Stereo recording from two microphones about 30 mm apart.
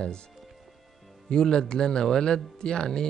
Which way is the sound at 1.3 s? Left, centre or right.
Left.